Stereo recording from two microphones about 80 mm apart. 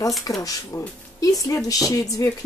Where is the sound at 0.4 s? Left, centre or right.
Left.